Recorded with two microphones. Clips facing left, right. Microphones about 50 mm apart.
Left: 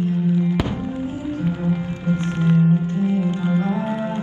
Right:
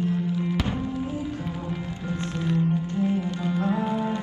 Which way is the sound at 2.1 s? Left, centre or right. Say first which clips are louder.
Left 7 dB; left.